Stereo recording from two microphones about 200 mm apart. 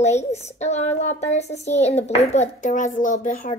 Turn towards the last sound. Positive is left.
turn(degrees=40)  # may be behind; listen again after turning